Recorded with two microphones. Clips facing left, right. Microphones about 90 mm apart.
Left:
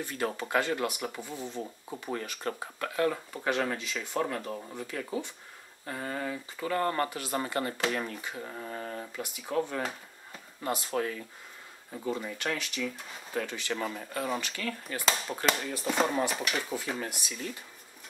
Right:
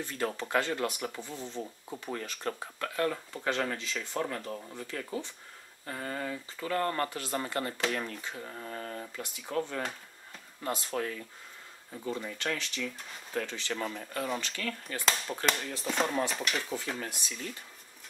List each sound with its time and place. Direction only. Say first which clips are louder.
0.0 s speech: left 1 dB; 10° left (ahead or behind)